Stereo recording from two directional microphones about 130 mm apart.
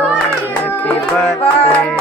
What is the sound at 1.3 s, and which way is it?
Music, 55° left (ahead or behind).